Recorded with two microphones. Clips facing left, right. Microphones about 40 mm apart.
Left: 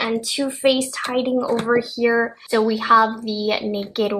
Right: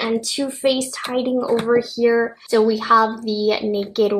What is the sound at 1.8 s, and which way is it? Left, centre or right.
A woman's voice, centre.